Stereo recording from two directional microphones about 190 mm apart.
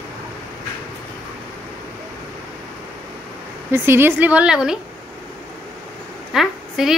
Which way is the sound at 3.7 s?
10° right (ahead or behind).